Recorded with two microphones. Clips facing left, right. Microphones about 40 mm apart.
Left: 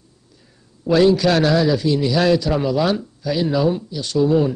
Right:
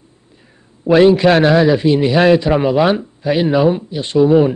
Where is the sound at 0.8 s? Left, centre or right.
Right.